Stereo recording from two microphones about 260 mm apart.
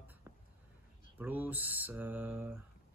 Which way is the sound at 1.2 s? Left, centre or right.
Centre.